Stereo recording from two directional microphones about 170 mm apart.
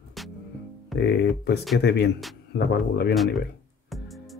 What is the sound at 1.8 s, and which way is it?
Speech, 70° left (ahead or behind).